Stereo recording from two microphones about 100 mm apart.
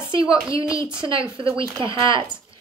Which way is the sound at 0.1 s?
55° right (ahead or behind).